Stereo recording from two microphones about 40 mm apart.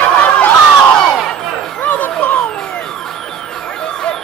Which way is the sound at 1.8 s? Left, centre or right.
Left.